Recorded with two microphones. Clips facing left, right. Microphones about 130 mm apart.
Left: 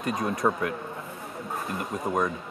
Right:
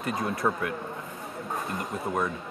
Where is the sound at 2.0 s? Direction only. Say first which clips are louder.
Left 3 dB; 20° left (ahead or behind).